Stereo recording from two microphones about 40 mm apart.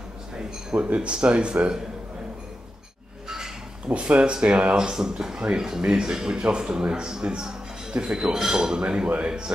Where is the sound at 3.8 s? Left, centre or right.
Right.